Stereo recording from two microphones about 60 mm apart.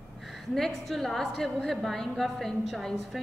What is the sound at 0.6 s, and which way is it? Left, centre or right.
A woman's voice, centre.